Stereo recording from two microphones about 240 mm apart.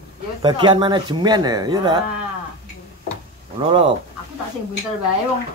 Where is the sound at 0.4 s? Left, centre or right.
Centre.